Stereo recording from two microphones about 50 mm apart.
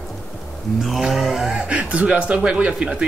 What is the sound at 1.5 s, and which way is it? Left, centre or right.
Speech, right.